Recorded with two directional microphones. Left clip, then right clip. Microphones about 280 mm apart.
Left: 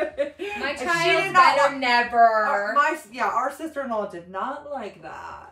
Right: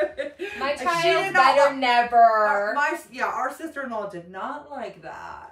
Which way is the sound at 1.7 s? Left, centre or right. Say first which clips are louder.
Right 1 dB; centre.